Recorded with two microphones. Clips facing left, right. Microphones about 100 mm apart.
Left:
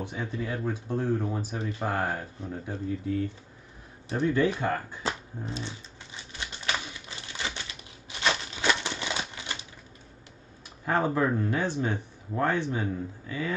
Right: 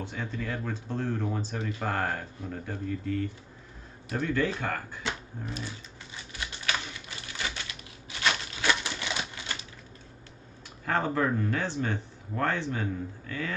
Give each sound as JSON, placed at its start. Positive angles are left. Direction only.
{"t": 0.0, "sound": "speech", "side_deg": 15}
{"t": 6.6, "sound": "typewriter", "side_deg": 20}
{"t": 8.1, "sound": "a sound", "side_deg": 25}
{"t": 10.9, "sound": "speech", "side_deg": 15}